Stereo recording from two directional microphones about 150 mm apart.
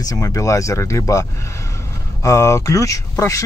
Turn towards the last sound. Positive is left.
turn(degrees=20)  # may be behind; listen again after turning